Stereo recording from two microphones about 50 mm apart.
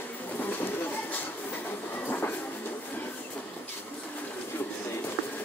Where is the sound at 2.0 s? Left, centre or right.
Left.